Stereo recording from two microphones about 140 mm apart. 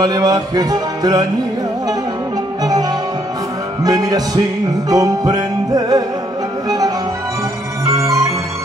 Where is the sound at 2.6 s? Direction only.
25° right (ahead or behind).